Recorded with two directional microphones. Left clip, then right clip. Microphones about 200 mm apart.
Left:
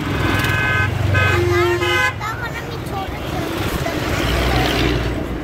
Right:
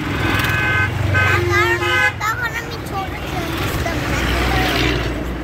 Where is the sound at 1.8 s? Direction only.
60° left (ahead or behind).